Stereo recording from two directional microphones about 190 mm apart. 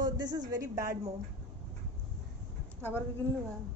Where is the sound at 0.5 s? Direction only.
15° right (ahead or behind).